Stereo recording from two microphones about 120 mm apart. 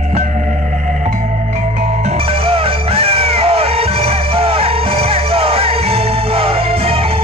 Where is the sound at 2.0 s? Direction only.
55° right (ahead or behind).